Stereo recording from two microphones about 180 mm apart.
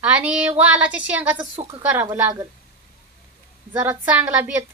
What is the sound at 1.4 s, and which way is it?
Speech, 25° right (ahead or behind).